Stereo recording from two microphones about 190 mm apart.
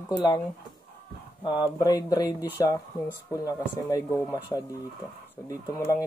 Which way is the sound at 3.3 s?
15° left (ahead or behind).